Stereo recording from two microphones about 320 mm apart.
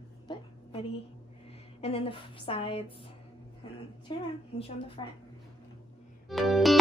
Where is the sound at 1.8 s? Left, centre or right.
Centre.